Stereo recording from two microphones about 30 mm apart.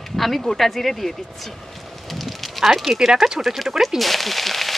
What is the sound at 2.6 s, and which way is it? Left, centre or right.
Speech, centre.